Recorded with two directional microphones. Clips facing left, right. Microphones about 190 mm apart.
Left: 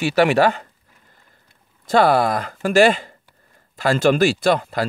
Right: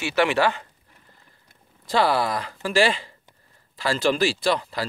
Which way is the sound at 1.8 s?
50° left (ahead or behind).